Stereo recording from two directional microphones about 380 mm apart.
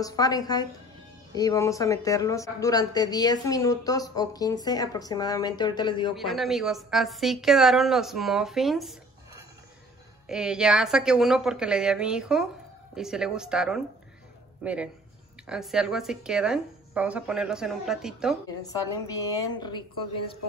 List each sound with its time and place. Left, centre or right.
0.0 s speech: centre
6.1 s a woman's voice: centre
10.2 s a woman's voice: centre
18.7 s speech: centre